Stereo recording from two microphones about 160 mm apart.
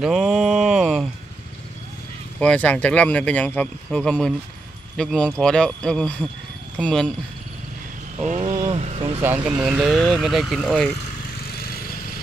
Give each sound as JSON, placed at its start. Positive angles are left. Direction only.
{"t": 0.0, "sound": "mantra", "side_deg": -5}
{"t": 2.4, "sound": "speech", "side_deg": 10}
{"t": 8.2, "sound": "vehicle", "side_deg": -45}
{"t": 9.2, "sound": "speech", "side_deg": -10}